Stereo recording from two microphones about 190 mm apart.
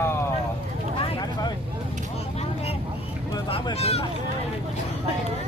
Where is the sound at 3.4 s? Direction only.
30° left (ahead or behind).